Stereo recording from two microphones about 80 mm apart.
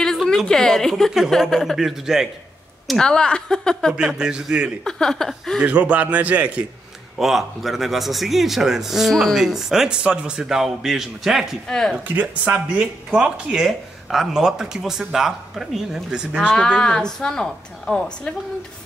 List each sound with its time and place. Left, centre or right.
0.0 s a sound: centre
0.5 s a man's voice: centre
3.0 s a woman's voice: centre
4.2 s speech: centre
4.8 s a woman's voice: centre
5.6 s speech: centre
7.2 s a man's voice: centre
12.2 s a man's voice: centre
16.5 s a woman's voice: centre